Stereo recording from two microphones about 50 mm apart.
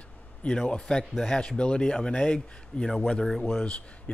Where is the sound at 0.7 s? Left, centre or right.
Centre.